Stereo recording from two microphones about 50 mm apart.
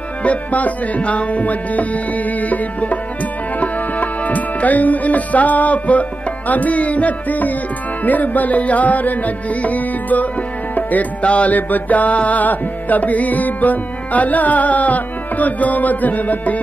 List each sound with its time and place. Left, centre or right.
0.2 s music: left